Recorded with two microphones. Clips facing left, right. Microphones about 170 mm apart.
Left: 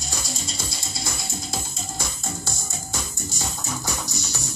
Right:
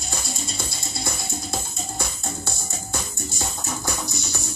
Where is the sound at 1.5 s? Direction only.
60° right (ahead or behind).